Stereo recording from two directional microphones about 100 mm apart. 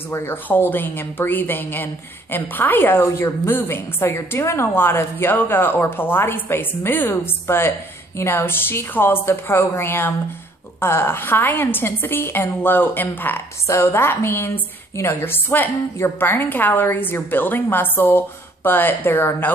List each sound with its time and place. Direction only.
0.1 s a woman's voice: 25° left (ahead or behind)